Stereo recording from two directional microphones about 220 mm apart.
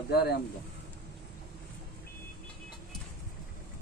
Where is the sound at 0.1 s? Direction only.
45° left (ahead or behind).